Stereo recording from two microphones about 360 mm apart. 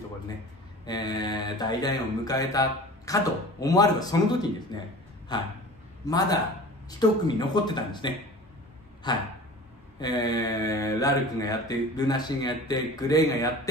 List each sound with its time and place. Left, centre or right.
0.8 s speech: centre